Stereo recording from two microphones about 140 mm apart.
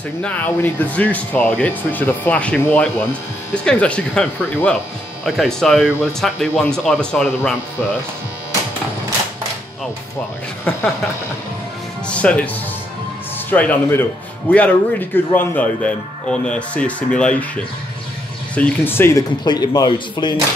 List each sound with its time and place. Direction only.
0.2 s a man's voice: 10° left (ahead or behind)
5.2 s a man's voice: centre (ahead or behind)
6.8 s a man's voice: centre (ahead or behind)
7.2 s a man's voice: 15° left (ahead or behind)
12.1 s a man's voice: 10° left (ahead or behind)
13.5 s a man's voice: 15° left (ahead or behind)
18.5 s a man's voice: 10° left (ahead or behind)
19.4 s speech: 30° left (ahead or behind)